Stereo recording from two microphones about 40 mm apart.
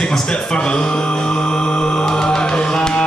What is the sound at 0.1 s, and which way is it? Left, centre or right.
Music, centre.